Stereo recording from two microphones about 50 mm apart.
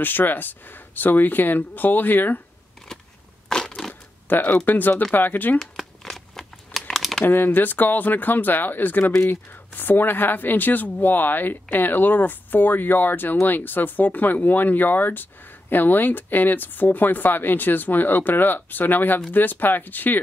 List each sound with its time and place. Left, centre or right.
0.0 s speech: left
3.4 s crushing: centre
4.3 s speech: left
5.6 s crumpling: centre
7.2 s speech: left